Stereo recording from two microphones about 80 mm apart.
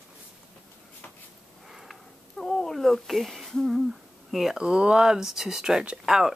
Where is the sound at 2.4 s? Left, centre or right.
Centre.